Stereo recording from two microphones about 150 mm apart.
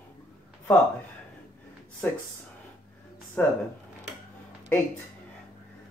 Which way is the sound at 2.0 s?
15° left (ahead or behind).